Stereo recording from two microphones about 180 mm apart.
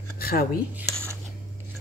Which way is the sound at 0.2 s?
60° left (ahead or behind).